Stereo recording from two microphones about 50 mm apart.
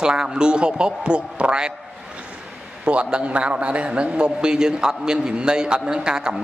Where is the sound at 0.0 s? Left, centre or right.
Centre.